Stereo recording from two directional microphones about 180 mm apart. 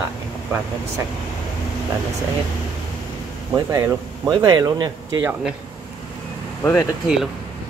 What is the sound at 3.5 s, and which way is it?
Speech, 20° right (ahead or behind).